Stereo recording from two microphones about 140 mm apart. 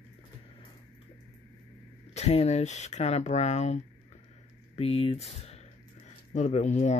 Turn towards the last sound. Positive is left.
turn(degrees=55)  # may be behind; listen again after turning